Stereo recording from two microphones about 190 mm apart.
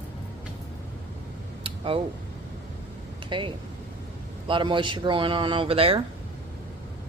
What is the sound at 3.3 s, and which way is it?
Speech, 25° right (ahead or behind).